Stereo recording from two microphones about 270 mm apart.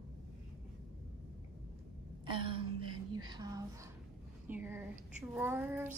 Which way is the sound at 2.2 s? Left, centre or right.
Centre.